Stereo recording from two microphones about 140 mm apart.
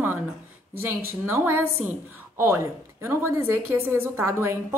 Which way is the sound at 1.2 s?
15° right (ahead or behind).